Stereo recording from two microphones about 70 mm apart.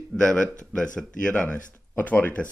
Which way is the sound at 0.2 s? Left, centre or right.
Centre.